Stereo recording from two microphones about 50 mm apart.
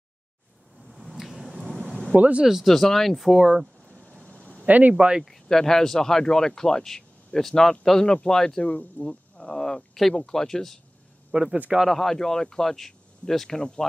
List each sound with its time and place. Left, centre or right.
1.1 s vehicle: centre
2.0 s speech: right
2.4 s speech: centre
2.7 s speech: centre
3.3 s speech: centre
4.0 s a sound: right
4.6 s speech: right
4.9 s speech: centre
5.2 s speech: centre
11.3 s speech: right
11.9 s speech: centre
13.6 s speech: centre